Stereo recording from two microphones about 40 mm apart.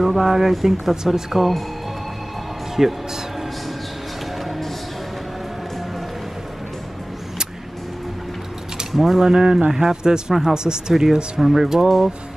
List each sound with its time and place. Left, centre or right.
0.0 s speech: centre
2.8 s speech: centre
8.9 s speech: centre
9.2 s speech: centre